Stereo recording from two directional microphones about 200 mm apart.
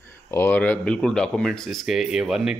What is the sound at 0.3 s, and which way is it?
A man's voice, 10° left (ahead or behind).